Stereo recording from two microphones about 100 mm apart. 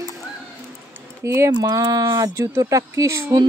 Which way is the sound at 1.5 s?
45° right (ahead or behind).